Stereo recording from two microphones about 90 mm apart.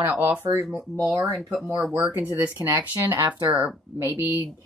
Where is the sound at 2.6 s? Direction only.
25° right (ahead or behind).